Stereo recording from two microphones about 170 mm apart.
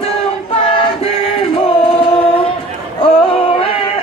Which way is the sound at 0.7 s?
35° left (ahead or behind).